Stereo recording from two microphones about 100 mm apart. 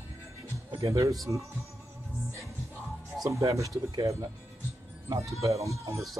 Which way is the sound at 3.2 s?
35° right (ahead or behind).